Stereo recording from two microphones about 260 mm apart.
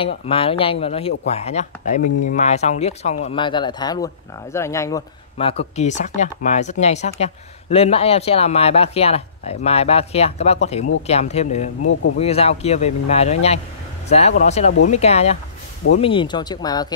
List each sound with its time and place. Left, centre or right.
0.2 s speech: left
11.8 s speech: left
12.2 s speech: left